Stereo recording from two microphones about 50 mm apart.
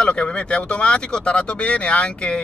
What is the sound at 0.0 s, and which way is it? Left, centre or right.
Speech, left.